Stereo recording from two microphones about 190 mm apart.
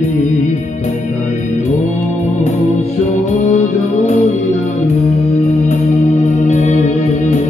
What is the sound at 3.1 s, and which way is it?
Music, 40° left (ahead or behind).